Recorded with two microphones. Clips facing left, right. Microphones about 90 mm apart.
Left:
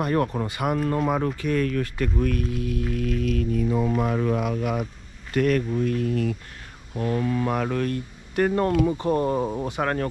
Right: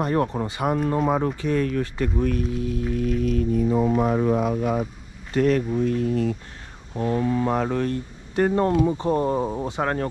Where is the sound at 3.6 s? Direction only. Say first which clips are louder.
Right 3 dB; 50° right (ahead or behind).